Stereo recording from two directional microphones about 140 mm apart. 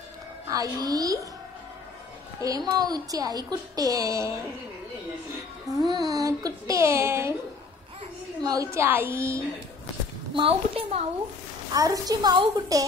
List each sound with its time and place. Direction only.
0.5 s a woman's voice: 25° right (ahead or behind)
2.4 s a woman's voice: 25° right (ahead or behind)
5.9 s a woman's voice: 25° right (ahead or behind)
8.4 s a woman's voice: 25° right (ahead or behind)
10.3 s a woman's voice: 40° right (ahead or behind)
11.7 s a woman's voice: 25° right (ahead or behind)